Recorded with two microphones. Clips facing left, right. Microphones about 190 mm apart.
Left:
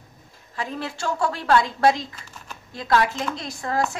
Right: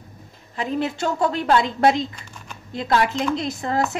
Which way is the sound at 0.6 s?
20° right (ahead or behind).